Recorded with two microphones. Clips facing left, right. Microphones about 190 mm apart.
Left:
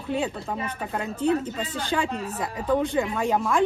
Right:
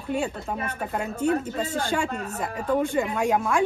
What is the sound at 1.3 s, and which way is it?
Speech, 50° right (ahead or behind).